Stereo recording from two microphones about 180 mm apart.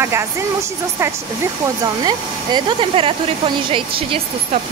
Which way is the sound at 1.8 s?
25° right (ahead or behind).